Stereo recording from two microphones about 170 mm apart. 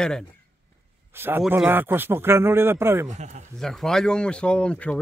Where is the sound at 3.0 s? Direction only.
45° right (ahead or behind).